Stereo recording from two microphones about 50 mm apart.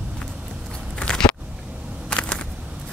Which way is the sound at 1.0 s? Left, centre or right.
Centre.